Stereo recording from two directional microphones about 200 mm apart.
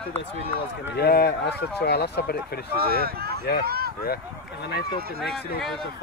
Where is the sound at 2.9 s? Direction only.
50° right (ahead or behind).